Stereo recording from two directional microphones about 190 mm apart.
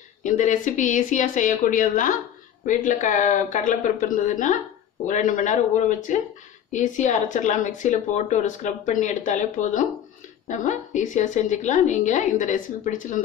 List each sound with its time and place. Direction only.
0.2 s speech: 40° left (ahead or behind)